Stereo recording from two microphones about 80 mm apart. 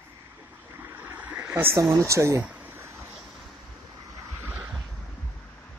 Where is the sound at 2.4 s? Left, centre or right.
Right.